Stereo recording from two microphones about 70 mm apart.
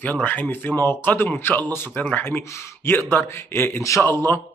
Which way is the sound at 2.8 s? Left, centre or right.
Left.